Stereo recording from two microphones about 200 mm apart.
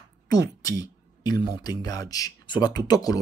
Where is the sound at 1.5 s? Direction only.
20° left (ahead or behind).